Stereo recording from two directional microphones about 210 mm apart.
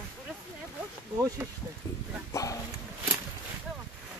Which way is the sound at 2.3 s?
15° left (ahead or behind).